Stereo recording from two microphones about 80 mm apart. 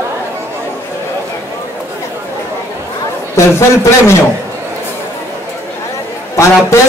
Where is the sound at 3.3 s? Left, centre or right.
Left.